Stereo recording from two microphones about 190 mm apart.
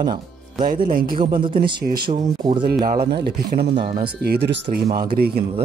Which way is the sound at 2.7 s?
50° right (ahead or behind).